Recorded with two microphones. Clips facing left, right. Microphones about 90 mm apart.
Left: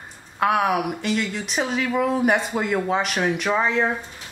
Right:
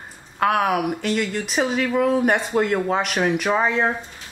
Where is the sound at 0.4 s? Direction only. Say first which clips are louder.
Right 1 dB; centre (ahead or behind).